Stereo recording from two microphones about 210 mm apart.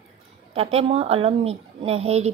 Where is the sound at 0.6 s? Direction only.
30° right (ahead or behind).